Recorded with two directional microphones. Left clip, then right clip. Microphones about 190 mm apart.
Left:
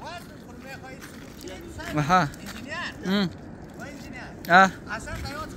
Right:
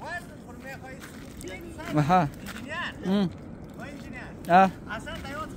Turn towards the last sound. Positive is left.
turn(degrees=-15)  # may be behind; listen again after turning